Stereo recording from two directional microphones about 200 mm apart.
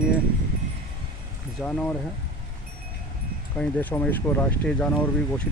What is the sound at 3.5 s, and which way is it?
Speech, 5° left (ahead or behind).